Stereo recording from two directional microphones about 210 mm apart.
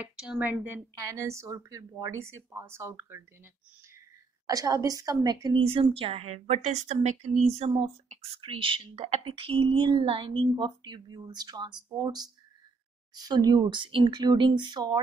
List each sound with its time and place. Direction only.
0.0 s a woman's voice: 5° right (ahead or behind)
4.5 s a woman's voice: 15° right (ahead or behind)